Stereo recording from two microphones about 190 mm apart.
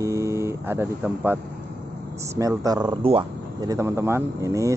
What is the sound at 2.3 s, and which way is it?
Speech, 20° right (ahead or behind).